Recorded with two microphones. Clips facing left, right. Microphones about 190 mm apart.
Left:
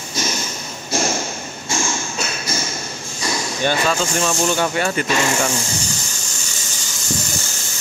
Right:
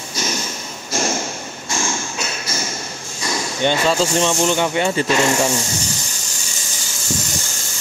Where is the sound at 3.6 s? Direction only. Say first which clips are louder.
Right 3 dB; 25° right (ahead or behind).